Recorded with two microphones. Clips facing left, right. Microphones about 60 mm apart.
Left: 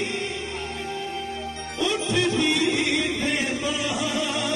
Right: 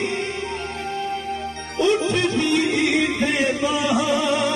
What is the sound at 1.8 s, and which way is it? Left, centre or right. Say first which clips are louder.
Music: right 5 dB; right.